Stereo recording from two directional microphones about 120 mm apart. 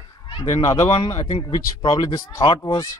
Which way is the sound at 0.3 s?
45° left (ahead or behind).